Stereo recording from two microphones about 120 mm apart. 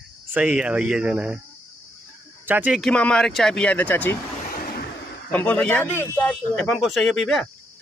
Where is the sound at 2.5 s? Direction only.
15° right (ahead or behind).